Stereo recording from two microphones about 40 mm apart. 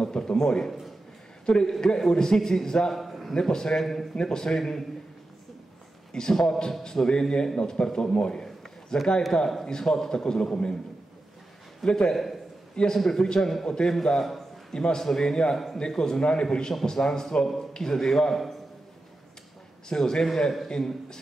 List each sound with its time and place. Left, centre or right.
0.0 s a man's voice: left
2.9 s a man's voice: centre
3.3 s a man's voice: centre
3.8 s a man's voice: centre
4.1 s a man's voice: centre
6.1 s a man's voice: centre
11.8 s a man's voice: centre
15.5 s a man's voice: centre
19.9 s a man's voice: centre